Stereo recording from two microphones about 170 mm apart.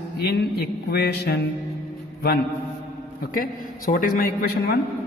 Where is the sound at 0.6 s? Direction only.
70° left (ahead or behind).